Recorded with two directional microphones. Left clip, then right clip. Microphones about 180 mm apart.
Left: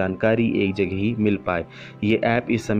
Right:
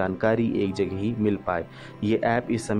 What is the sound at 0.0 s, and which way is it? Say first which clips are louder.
Speech: left 3 dB; 30° left (ahead or behind).